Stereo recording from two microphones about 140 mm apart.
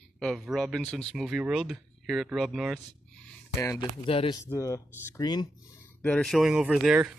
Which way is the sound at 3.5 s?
25° left (ahead or behind).